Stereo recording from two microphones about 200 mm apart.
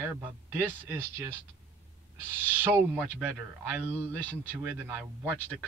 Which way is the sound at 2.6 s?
10° right (ahead or behind).